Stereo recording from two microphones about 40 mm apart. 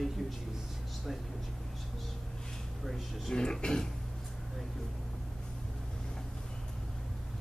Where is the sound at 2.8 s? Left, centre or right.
Centre.